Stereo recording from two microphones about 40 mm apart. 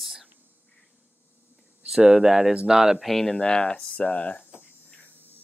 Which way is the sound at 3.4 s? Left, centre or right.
Left.